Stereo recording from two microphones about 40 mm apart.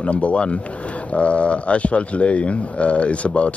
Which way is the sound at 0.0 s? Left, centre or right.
Left.